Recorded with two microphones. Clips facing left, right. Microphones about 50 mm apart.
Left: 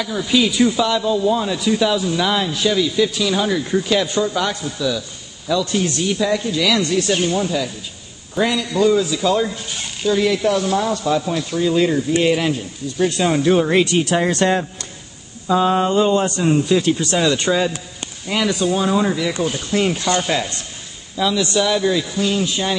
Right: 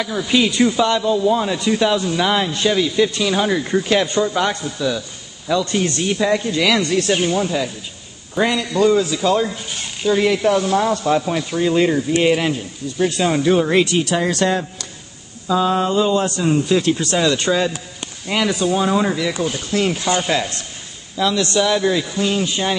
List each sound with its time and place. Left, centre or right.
0.0 s a man's voice: centre; by 6.8 s right
6.9 s a man's voice: centre
8.7 s a man's voice: centre
10.0 s a man's voice: right
12.9 s speech: centre
14.0 s speech: centre
14.3 s a sound: left
16.4 s a man's voice: centre
19.4 s speech: centre
20.1 s a man's voice: centre
21.2 s a man's voice: centre